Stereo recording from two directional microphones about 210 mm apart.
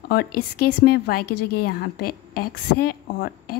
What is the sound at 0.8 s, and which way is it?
A woman's voice, 45° left (ahead or behind).